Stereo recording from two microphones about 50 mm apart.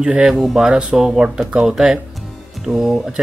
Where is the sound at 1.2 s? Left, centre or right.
Centre.